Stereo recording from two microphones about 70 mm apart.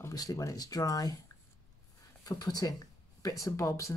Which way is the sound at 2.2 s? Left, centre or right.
Left.